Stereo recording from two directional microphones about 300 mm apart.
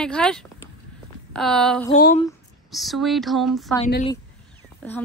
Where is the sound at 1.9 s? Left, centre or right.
Left.